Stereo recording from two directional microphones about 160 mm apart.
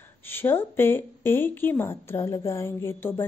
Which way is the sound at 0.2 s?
15° left (ahead or behind).